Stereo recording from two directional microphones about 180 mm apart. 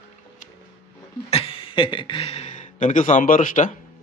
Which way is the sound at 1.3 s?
30° left (ahead or behind).